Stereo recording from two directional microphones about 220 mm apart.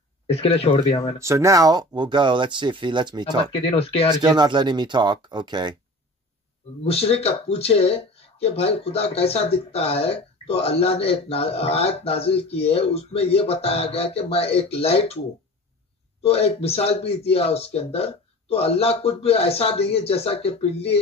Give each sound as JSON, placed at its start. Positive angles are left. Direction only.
{"t": 0.3, "sound": "speech", "side_deg": 25}
{"t": 1.2, "sound": "speech", "side_deg": -15}
{"t": 3.5, "sound": "speech", "side_deg": 25}
{"t": 4.2, "sound": "speech", "side_deg": -20}
{"t": 6.9, "sound": "speech", "side_deg": 25}
{"t": 16.2, "sound": "speech", "side_deg": 25}